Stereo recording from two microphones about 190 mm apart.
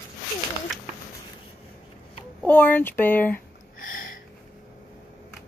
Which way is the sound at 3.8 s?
45° left (ahead or behind).